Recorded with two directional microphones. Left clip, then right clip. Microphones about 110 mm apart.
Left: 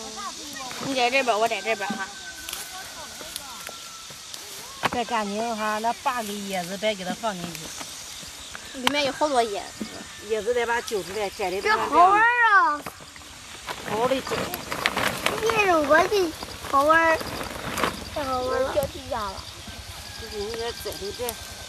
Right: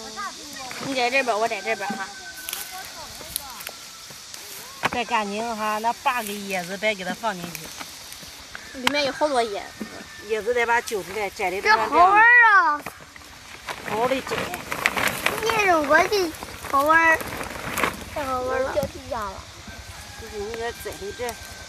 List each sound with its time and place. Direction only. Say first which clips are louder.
0.7 s speech: even; centre (ahead or behind)
4.9 s speech: right 3 dB; 35° right (ahead or behind)
6.5 s speech: right 2 dB; 25° right (ahead or behind)
8.8 s speech: right 1 dB; 5° left (ahead or behind)
10.3 s speech: right 3 dB; 15° right (ahead or behind)
13.7 s a sound: right 1 dB; 5° right (ahead or behind)
18.8 s speech: even; 5° left (ahead or behind)
20.5 s speech: even; 5° right (ahead or behind)